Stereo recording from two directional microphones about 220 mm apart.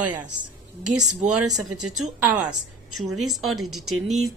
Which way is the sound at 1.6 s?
90° right.